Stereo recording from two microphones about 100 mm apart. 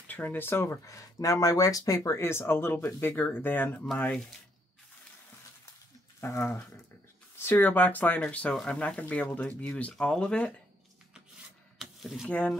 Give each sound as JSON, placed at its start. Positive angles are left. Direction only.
{"t": 0.1, "sound": "speech", "side_deg": 20}
{"t": 6.2, "sound": "speech", "side_deg": 25}
{"t": 11.8, "sound": "a sound", "side_deg": 0}
{"t": 12.3, "sound": "speech", "side_deg": 15}